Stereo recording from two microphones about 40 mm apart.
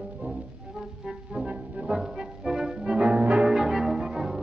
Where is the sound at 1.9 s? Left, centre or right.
Right.